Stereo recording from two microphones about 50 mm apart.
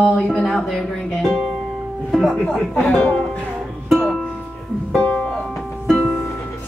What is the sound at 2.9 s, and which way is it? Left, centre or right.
Music, centre.